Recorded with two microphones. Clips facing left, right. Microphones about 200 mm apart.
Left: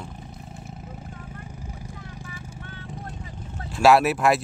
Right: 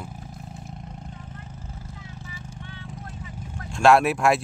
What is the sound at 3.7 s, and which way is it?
Speech, 5° left (ahead or behind).